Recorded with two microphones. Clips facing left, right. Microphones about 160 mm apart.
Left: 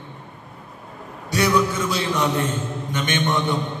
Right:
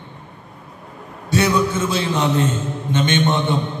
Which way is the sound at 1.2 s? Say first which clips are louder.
Right 2 dB; 25° right (ahead or behind).